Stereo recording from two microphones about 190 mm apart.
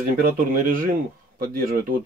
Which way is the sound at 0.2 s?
45° right (ahead or behind).